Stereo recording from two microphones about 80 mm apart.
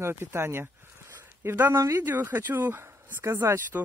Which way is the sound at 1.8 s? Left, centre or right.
Right.